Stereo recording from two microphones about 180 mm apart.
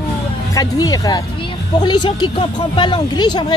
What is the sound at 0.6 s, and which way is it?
Speech, 20° left (ahead or behind).